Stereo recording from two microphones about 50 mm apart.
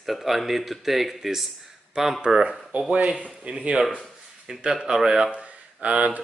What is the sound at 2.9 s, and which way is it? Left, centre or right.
A man's voice, right.